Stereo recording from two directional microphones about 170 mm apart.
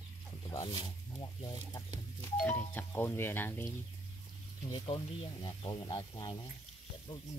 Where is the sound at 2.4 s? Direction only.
10° left (ahead or behind).